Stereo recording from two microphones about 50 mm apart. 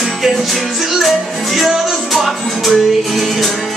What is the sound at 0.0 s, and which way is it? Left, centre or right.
Music, centre.